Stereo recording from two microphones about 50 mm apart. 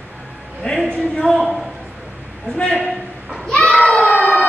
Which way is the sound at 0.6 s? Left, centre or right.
Left.